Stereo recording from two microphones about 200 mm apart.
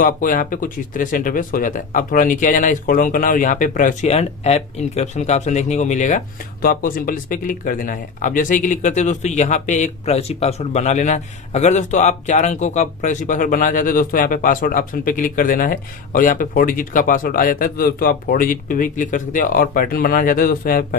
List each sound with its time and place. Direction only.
0.0 s speech: 40° left (ahead or behind)